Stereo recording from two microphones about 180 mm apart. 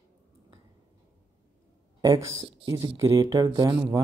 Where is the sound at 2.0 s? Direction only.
20° right (ahead or behind).